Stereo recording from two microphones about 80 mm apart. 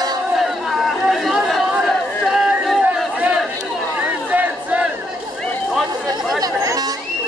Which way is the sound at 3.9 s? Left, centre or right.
Centre.